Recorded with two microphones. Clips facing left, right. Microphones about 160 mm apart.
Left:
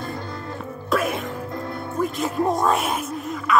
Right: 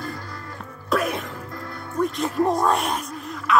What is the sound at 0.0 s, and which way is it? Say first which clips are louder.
Music: left 3 dB; 25° left (ahead or behind).